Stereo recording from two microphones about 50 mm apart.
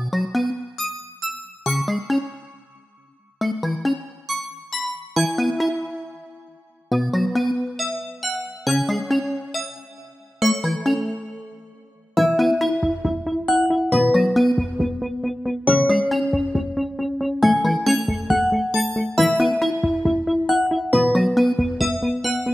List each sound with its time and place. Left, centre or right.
0.0 s music: centre
3.3 s music: centre
6.9 s music: centre
9.2 s music: centre
10.4 s music: centre
12.2 s music: centre